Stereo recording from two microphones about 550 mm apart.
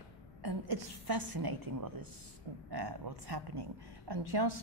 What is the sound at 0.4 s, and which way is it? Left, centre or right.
A woman's voice, right.